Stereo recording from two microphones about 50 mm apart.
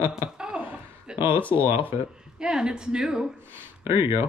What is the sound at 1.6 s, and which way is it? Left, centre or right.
Speech, right.